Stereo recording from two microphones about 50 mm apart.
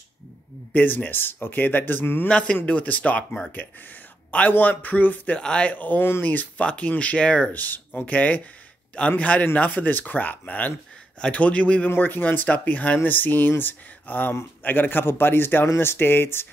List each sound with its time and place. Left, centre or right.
0.7 s speech: left
2.2 s speech: left
5.4 s speech: left
6.6 s speech: left
11.9 s speech: left
12.4 s a man's voice: left